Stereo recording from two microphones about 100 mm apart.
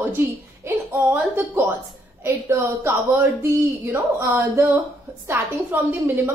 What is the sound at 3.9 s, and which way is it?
A child's voice, 25° right (ahead or behind).